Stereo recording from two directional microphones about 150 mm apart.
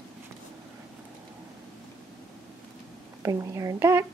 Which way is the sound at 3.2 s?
20° right (ahead or behind).